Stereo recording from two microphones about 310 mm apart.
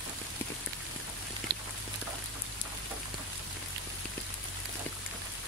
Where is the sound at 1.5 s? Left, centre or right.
Right.